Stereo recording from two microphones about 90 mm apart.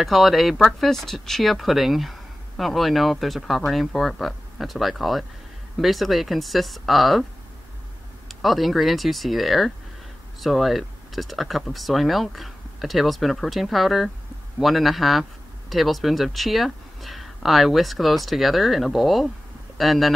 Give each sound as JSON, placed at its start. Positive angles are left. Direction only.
{"t": 0.0, "sound": "speech", "side_deg": 0}
{"t": 8.3, "sound": "speech", "side_deg": 0}